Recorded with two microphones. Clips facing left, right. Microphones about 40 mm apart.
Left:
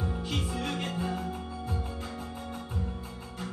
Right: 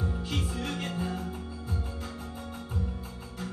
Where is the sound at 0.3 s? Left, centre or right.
Centre.